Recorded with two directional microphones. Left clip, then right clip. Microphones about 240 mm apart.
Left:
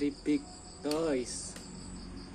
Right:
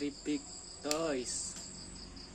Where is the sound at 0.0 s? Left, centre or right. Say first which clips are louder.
Left 6 dB; centre.